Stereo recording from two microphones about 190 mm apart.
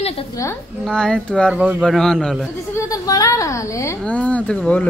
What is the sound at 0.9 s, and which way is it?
Speech, 5° left (ahead or behind).